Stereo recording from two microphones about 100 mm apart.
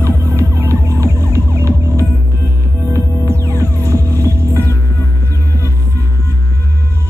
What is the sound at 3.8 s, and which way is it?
Music, 35° right (ahead or behind).